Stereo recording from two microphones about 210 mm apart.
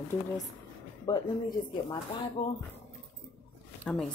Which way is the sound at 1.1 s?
15° left (ahead or behind).